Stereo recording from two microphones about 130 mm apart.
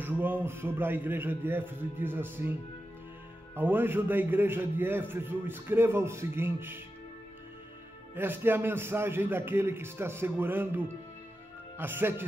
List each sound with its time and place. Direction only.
0.0 s a man's voice: 15° right (ahead or behind)
3.5 s a man's voice: 15° right (ahead or behind)
8.1 s a man's voice: 15° right (ahead or behind)